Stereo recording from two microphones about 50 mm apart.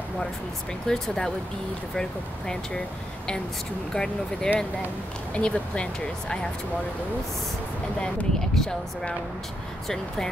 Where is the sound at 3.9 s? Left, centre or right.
Centre.